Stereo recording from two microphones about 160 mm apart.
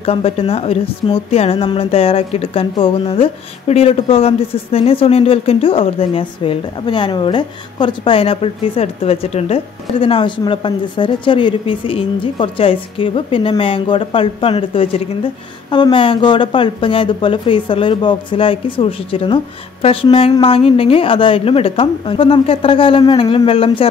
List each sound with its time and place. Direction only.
0.0 s speech: 35° left (ahead or behind)